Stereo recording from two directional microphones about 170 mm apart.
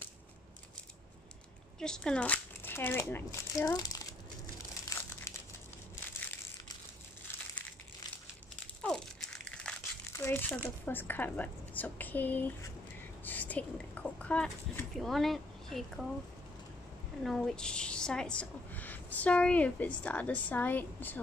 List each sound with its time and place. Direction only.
1.8 s speech: 5° left (ahead or behind); by 4.1 s 20° left (ahead or behind)
4.9 s crumpling: 20° left (ahead or behind)
8.8 s crumpling: 5° left (ahead or behind)
10.1 s a woman's voice: 15° left (ahead or behind)
17.2 s a woman's voice: centre (ahead or behind)